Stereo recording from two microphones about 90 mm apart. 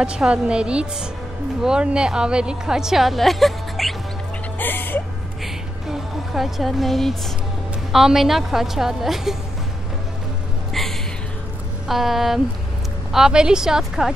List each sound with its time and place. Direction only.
0.0 s a woman's voice: 10° right (ahead or behind)
4.6 s speech: 20° left (ahead or behind)
5.4 s music: centre (ahead or behind)
7.9 s a woman's voice: 5° right (ahead or behind)
10.7 s a sound: 5° left (ahead or behind)
11.9 s a woman's voice: 5° right (ahead or behind)